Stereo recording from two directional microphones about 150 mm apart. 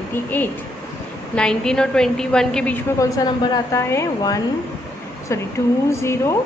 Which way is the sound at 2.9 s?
25° left (ahead or behind).